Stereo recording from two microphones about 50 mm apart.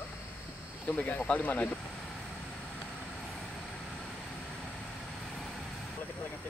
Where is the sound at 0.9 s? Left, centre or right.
Left.